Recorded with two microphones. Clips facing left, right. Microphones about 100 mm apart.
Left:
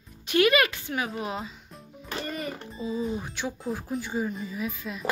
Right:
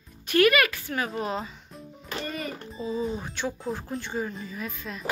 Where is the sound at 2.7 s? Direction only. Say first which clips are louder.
Right 1 dB; centre (ahead or behind).